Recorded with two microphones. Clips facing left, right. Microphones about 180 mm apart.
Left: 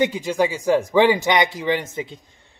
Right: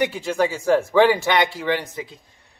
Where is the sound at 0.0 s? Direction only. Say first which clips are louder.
Left 1 dB; 15° left (ahead or behind).